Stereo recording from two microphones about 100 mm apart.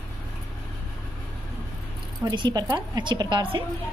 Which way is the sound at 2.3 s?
50° right (ahead or behind).